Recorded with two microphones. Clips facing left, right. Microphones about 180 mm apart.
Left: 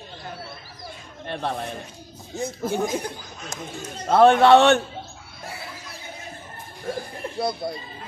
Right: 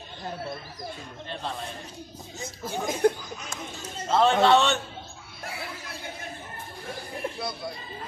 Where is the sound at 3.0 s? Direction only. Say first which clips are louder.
Right 13 dB; 55° right (ahead or behind).